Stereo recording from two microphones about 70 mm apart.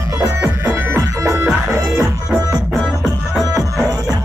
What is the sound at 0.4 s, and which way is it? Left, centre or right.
Music, right.